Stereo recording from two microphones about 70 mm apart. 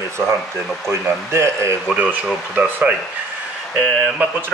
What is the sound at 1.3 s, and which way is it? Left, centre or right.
Speech, right.